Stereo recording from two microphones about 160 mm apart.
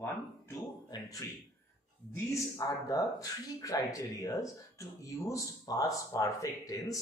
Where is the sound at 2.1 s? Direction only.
20° left (ahead or behind).